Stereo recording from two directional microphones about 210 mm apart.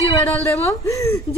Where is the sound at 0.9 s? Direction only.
15° left (ahead or behind).